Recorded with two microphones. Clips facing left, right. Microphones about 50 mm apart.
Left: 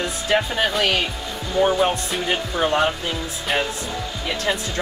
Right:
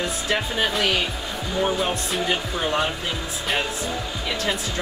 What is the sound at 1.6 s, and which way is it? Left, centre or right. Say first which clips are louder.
Speech: left 5 dB; centre.